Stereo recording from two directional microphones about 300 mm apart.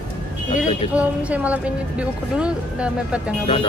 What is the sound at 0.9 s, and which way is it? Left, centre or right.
Speech, centre.